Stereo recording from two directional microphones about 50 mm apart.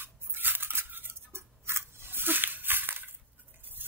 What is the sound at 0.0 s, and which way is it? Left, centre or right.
Scissors, right.